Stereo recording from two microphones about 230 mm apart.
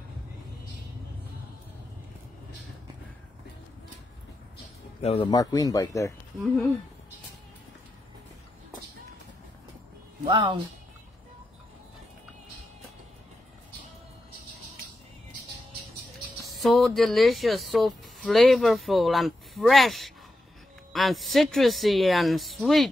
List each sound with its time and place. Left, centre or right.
5.0 s speech: left
10.2 s speech: right
16.5 s speech: centre